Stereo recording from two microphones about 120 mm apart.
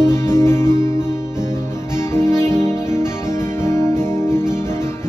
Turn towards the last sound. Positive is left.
turn(degrees=20)  # may be behind; listen again after turning